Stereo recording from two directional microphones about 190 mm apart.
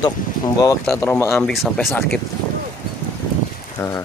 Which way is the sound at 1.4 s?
Centre (ahead or behind).